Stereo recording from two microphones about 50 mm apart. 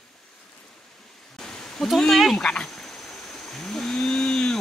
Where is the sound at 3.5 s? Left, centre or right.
Centre.